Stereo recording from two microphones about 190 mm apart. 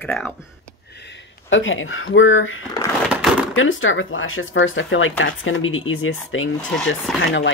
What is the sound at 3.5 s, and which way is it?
Speech, 90° left.